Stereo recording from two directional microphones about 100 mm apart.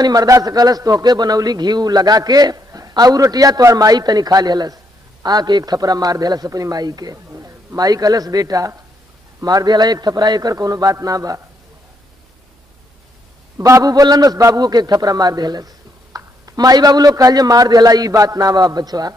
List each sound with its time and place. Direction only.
0.0 s a man's voice: 40° right (ahead or behind)
13.6 s a man's voice: 30° right (ahead or behind)